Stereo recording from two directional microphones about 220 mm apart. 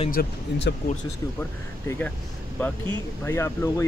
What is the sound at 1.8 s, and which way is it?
Speech, 10° left (ahead or behind).